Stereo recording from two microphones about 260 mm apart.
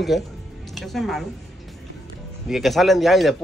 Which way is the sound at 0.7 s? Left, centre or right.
Centre.